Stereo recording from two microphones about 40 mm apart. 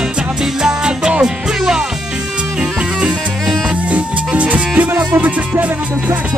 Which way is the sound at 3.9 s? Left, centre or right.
Right.